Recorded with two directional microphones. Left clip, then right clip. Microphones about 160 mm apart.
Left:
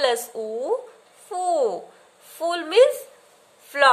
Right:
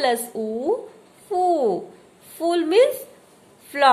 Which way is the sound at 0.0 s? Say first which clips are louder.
Right 1 dB; 30° left (ahead or behind).